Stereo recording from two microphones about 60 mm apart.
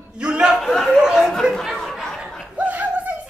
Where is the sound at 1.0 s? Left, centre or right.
Centre.